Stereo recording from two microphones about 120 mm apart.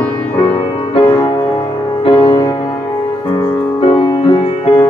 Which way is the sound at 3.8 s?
50° left (ahead or behind).